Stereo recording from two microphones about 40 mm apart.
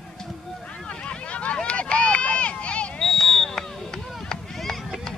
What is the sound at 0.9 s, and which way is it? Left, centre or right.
Run, left.